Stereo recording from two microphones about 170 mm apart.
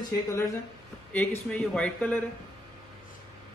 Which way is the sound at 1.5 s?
5° left (ahead or behind).